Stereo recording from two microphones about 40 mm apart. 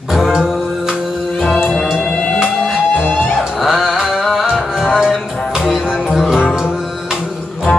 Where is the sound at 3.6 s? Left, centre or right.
Centre.